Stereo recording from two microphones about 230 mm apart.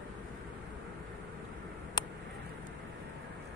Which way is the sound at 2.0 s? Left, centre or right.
Centre.